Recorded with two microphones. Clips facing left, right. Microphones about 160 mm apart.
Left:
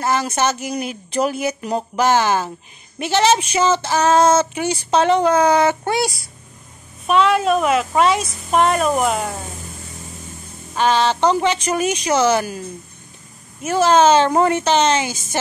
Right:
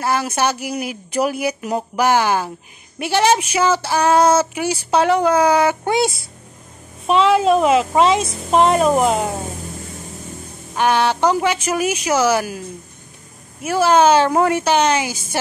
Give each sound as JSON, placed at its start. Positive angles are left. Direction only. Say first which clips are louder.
{"t": 0.0, "sound": "speech", "louder": "even", "side_deg": -10}
{"t": 5.9, "sound": "speech", "louder": "right 3 dB", "side_deg": -25}
{"t": 10.7, "sound": "speech", "louder": "even", "side_deg": -15}